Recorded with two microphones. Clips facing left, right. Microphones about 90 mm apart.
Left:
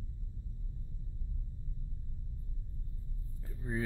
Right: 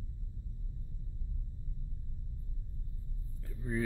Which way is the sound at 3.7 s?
20° left (ahead or behind).